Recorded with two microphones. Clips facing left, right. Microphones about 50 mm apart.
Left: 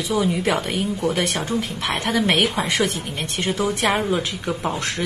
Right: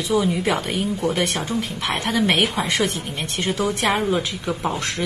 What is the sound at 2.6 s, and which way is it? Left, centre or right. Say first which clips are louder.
Speech: even; centre.